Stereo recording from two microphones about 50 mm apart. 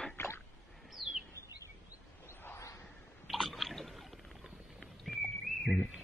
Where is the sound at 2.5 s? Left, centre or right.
Left.